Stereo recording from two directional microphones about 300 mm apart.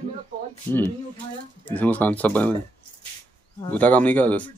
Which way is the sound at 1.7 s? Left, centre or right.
Centre.